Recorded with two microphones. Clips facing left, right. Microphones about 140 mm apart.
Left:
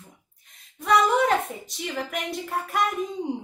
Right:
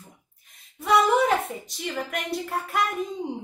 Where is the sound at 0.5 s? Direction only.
Centre (ahead or behind).